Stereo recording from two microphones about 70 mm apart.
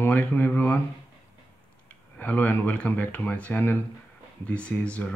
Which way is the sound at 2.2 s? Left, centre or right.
Left.